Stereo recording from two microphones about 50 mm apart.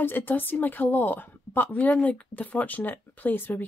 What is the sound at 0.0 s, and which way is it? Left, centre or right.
A woman's voice, left.